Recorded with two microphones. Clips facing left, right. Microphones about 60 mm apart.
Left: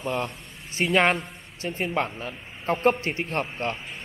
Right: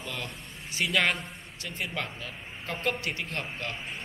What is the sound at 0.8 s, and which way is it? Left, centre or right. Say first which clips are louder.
A man's voice: left 6 dB; left.